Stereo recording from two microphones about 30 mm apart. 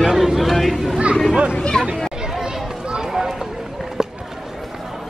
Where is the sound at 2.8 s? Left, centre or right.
Right.